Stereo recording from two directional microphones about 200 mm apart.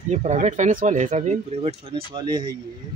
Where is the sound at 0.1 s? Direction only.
35° right (ahead or behind).